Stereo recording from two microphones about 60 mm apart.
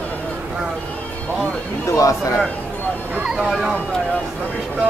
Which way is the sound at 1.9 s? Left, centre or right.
Left.